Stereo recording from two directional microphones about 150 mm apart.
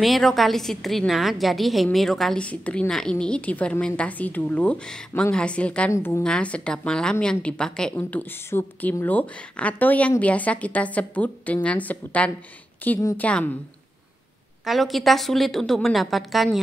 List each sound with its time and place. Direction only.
0.0 s a woman's voice: centre (ahead or behind)
5.9 s a woman's voice: 20° left (ahead or behind)
6.2 s a woman's voice: 5° left (ahead or behind)
14.6 s a woman's voice: centre (ahead or behind)